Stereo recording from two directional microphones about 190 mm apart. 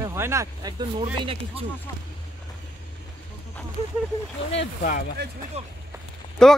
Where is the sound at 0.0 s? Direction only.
15° right (ahead or behind).